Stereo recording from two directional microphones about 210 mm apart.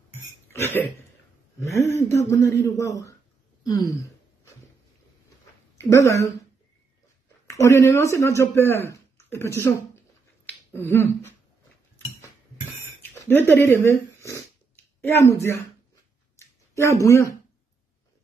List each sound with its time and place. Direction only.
0.1 s burping: 10° left (ahead or behind)
1.6 s a man's voice: 15° left (ahead or behind)
3.6 s a sound: 20° left (ahead or behind)
5.9 s a man's voice: 15° left (ahead or behind)
7.4 s speech: 15° left (ahead or behind)
10.4 s finger snapping: 10° left (ahead or behind)
13.2 s a man's voice: 10° left (ahead or behind)
16.3 s a sound: 15° left (ahead or behind)
17.0 s a man's voice: 15° left (ahead or behind)